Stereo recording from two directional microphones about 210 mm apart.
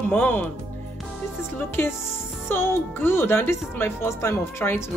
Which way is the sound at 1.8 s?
10° left (ahead or behind).